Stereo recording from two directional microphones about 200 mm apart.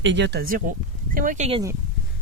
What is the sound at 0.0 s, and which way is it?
Speech, 60° right (ahead or behind).